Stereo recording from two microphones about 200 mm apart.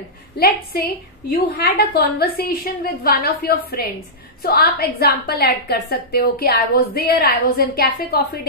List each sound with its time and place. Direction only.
0.7 s a woman's voice: 50° left (ahead or behind)